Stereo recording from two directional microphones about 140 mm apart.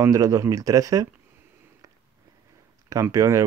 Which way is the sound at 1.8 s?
25° right (ahead or behind).